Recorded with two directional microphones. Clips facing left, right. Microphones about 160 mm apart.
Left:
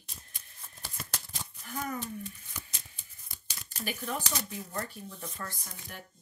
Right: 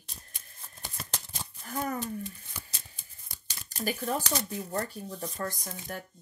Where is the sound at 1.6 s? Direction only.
35° right (ahead or behind).